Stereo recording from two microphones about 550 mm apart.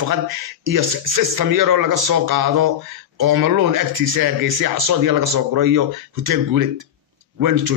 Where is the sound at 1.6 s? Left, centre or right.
Right.